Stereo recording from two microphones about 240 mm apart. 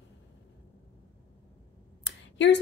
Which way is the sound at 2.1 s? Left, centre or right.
Left.